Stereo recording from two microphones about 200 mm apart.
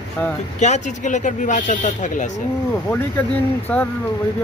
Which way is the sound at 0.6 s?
35° left (ahead or behind).